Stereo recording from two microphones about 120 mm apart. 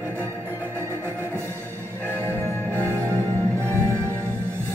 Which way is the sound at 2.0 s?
15° left (ahead or behind).